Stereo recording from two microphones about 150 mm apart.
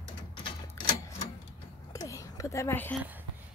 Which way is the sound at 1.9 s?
20° left (ahead or behind).